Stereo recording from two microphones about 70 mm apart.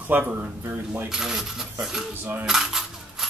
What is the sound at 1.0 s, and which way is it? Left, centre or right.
Speech, centre.